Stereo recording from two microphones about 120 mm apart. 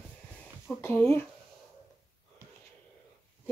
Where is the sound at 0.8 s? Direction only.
20° left (ahead or behind).